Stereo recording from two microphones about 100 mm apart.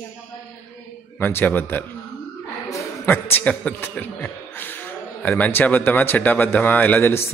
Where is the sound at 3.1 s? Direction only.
15° left (ahead or behind).